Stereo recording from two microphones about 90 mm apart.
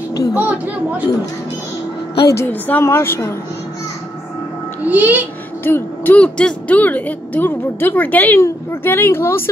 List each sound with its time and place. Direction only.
0.3 s speech: 20° right (ahead or behind)
2.3 s a woman's voice: 20° left (ahead or behind)
4.8 s a child's voice: 20° right (ahead or behind)
5.6 s speech: 25° left (ahead or behind)
6.1 s a woman's voice: 15° left (ahead or behind)
8.4 s a woman's voice: 30° left (ahead or behind)